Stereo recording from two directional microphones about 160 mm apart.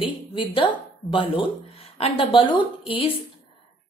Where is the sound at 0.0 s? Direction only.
30° left (ahead or behind).